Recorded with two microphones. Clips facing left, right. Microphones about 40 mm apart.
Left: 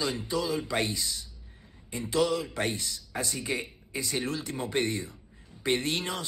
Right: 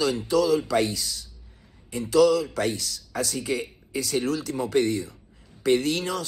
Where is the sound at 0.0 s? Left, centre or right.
Left.